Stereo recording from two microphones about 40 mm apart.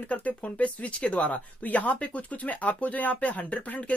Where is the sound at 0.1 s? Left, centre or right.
Left.